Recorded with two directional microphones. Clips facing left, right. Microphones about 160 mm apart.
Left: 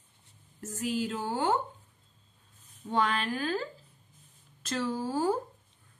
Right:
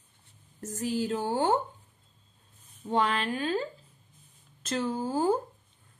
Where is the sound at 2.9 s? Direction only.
30° right (ahead or behind).